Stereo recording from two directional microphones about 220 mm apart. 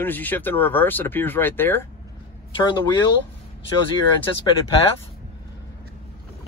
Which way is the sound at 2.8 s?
20° left (ahead or behind).